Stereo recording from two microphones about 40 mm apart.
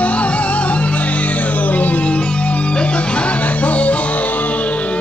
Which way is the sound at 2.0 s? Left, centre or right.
Left.